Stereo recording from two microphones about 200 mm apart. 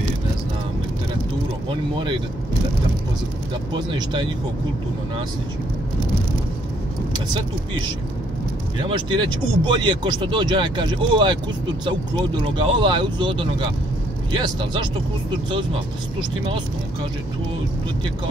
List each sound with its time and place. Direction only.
3.7 s speech: 25° right (ahead or behind)
8.8 s speech: 25° right (ahead or behind)
12.5 s speech: 25° right (ahead or behind)